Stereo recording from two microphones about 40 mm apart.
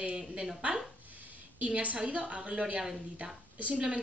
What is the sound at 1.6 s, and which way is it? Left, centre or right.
A woman's voice, right.